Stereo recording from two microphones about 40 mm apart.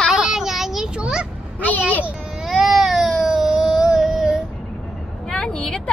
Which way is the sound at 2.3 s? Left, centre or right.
Centre.